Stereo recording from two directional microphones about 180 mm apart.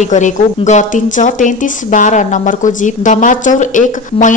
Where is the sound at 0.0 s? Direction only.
40° left (ahead or behind).